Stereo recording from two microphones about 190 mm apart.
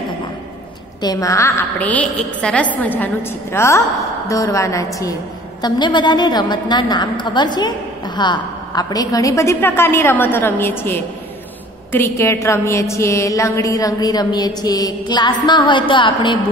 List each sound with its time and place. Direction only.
1.0 s a woman's voice: 20° left (ahead or behind)